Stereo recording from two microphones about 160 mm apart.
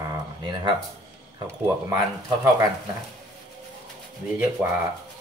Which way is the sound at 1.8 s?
20° right (ahead or behind).